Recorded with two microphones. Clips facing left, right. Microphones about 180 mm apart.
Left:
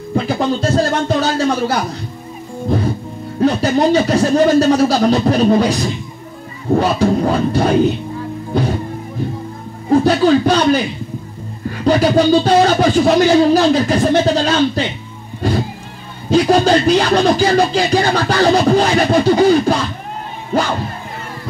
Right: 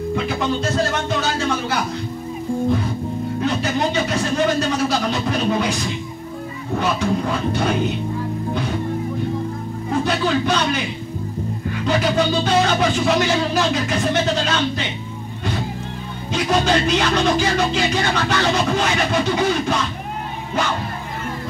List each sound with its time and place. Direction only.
0.1 s a sound: 35° left (ahead or behind)
3.3 s a sound: 35° left (ahead or behind)
6.7 s music: 35° left (ahead or behind)
9.8 s music: 35° left (ahead or behind)
11.8 s music: 35° left (ahead or behind)
16.3 s music: 35° left (ahead or behind)